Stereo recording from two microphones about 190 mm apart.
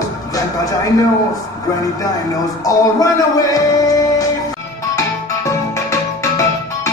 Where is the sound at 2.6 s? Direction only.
15° left (ahead or behind).